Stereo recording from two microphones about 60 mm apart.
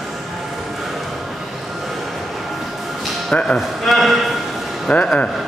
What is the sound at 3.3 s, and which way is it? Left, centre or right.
Music, centre.